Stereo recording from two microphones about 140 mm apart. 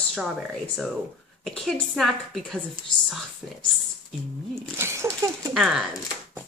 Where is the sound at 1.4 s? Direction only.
5° left (ahead or behind).